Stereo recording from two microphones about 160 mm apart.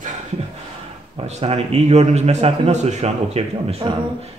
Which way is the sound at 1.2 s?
40° right (ahead or behind).